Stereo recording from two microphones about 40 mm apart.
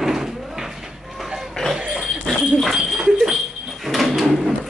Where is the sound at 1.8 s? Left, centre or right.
Right.